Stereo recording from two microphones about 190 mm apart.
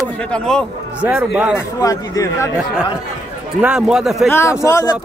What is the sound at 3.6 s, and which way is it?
Speech, 5° right (ahead or behind).